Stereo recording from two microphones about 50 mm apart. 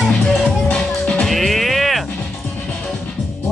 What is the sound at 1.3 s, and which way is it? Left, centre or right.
Music, centre.